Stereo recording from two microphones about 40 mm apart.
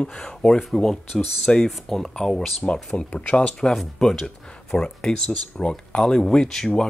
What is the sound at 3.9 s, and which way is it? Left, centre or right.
Speech, centre.